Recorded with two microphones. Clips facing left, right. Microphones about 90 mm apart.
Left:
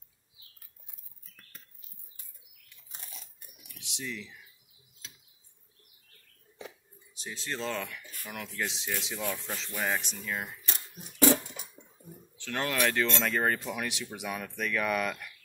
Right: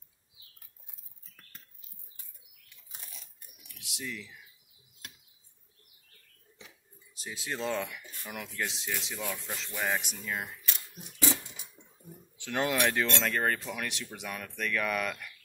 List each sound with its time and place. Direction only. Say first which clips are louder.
3.8 s speech: left 1 dB; 5° right (ahead or behind)
5.0 s a sound: right 3 dB; 60° right (ahead or behind)
7.2 s speech: even; 5° right (ahead or behind)
8.4 s speech: left 1 dB; centre (ahead or behind)
11.1 s a sound: left 8 dB; 55° left (ahead or behind)
12.4 s speech: right 1 dB; 15° right (ahead or behind)
13.2 s speech: left 1 dB; 5° left (ahead or behind)